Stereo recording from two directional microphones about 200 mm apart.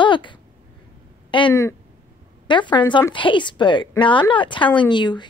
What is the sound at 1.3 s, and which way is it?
A woman's voice, 20° left (ahead or behind).